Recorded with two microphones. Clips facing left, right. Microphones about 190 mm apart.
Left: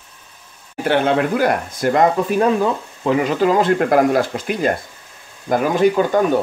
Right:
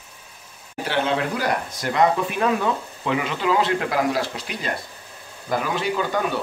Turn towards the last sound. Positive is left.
turn(degrees=50)  # may be behind; listen again after turning